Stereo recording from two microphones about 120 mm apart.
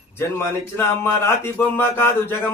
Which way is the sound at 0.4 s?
20° left (ahead or behind).